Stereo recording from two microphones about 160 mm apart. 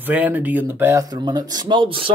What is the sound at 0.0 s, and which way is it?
Speech, 10° right (ahead or behind).